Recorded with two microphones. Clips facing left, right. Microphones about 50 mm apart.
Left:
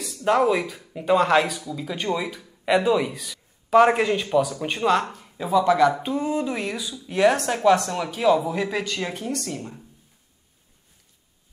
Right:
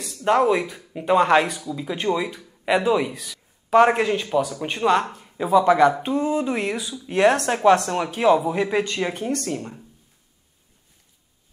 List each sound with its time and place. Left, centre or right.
0.0 s a man's voice: centre; by 5.9 s right
6.1 s a man's voice: centre